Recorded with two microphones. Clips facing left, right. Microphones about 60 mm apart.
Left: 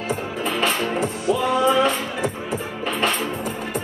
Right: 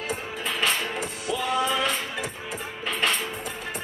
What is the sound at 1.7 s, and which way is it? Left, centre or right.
Music, left.